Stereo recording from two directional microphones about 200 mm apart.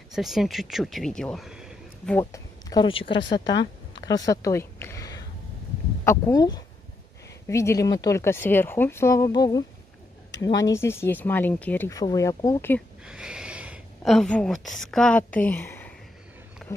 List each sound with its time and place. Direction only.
0.1 s speech: centre (ahead or behind)
2.1 s speech: 15° left (ahead or behind)
3.9 s a sound: 20° left (ahead or behind)
6.0 s speech: 15° left (ahead or behind)
10.7 s speech: 15° left (ahead or behind)
13.0 s speech: 5° right (ahead or behind)
16.6 s wild animals: centre (ahead or behind)